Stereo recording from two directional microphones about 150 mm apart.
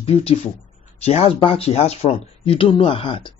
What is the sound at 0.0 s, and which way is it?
Speech, 40° left (ahead or behind).